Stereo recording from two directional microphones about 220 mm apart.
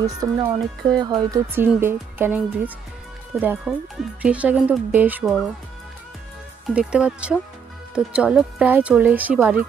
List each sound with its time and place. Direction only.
0.2 s speech: 15° right (ahead or behind)
1.3 s speech: 10° right (ahead or behind)
6.7 s speech: 5° right (ahead or behind)